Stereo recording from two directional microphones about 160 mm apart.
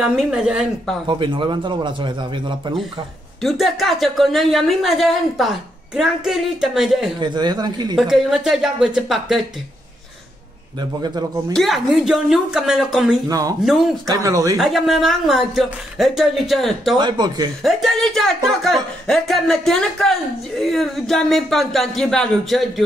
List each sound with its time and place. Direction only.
0.0 s speech: 5° right (ahead or behind)
1.0 s a man's voice: 30° right (ahead or behind)
3.4 s speech: centre (ahead or behind)
7.2 s a man's voice: 30° right (ahead or behind)
7.9 s speech: 5° right (ahead or behind)
10.8 s a man's voice: 25° right (ahead or behind)
11.5 s speech: centre (ahead or behind)
13.3 s a man's voice: 20° right (ahead or behind)
13.7 s speech: centre (ahead or behind)
14.0 s a man's voice: 25° right (ahead or behind)
14.6 s speech: centre (ahead or behind)
17.0 s a man's voice: 25° right (ahead or behind)
17.6 s speech: centre (ahead or behind)